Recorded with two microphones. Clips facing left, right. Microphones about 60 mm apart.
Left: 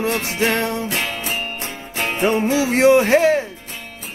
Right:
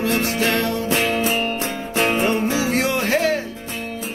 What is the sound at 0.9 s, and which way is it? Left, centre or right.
Music, right.